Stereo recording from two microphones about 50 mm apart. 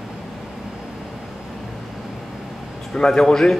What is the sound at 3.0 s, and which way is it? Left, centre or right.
Speech, centre.